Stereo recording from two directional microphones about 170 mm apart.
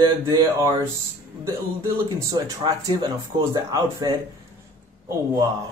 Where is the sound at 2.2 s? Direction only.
20° right (ahead or behind).